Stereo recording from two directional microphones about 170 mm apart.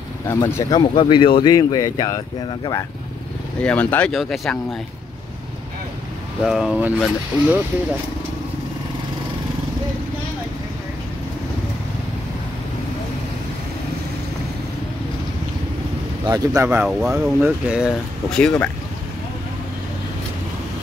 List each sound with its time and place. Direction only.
0.3 s speech: 20° left (ahead or behind)
3.6 s speech: 10° left (ahead or behind)
6.4 s speech: centre (ahead or behind)
16.3 s speech: 20° right (ahead or behind)
16.6 s speech: 5° right (ahead or behind)